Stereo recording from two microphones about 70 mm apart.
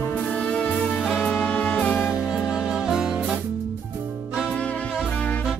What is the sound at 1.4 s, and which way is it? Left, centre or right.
Music, left.